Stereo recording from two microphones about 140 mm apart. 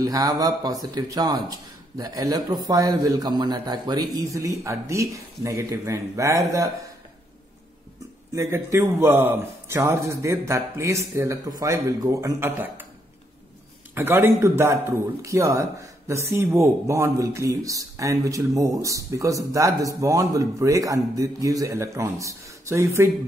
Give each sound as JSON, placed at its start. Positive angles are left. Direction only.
{"t": 0.0, "sound": "a man's voice", "side_deg": -25}
{"t": 8.3, "sound": "a man's voice", "side_deg": -20}
{"t": 13.9, "sound": "a man's voice", "side_deg": -15}